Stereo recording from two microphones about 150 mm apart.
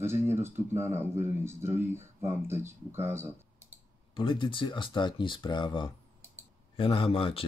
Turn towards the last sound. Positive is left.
turn(degrees=40)  # may be behind; listen again after turning